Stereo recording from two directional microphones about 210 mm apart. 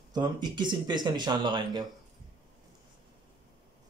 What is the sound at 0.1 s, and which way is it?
Speech, 20° right (ahead or behind).